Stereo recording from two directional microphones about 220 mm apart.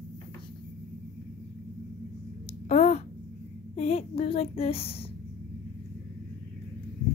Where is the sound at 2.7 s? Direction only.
30° left (ahead or behind).